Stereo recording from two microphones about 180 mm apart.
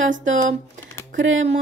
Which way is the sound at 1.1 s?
90° right.